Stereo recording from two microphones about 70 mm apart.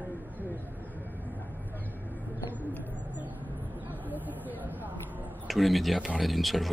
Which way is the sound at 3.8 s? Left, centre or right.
Right.